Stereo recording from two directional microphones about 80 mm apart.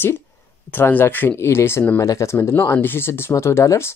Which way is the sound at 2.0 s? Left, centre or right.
Left.